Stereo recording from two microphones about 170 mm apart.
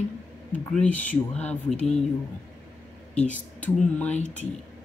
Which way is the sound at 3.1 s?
10° left (ahead or behind).